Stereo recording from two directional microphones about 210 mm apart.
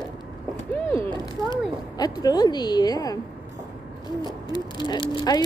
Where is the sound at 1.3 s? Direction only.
20° left (ahead or behind).